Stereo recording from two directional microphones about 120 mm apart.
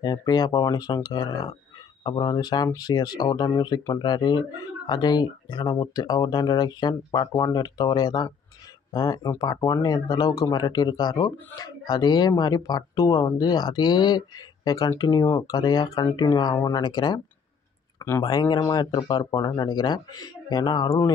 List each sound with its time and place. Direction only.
0.0 s speech: 35° left (ahead or behind)
16.5 s speech: 25° left (ahead or behind)
16.8 s speech: 35° left (ahead or behind)
18.2 s speech: 35° left (ahead or behind)